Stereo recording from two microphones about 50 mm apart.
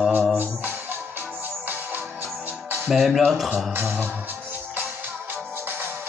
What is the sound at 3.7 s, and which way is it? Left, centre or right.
Music, right.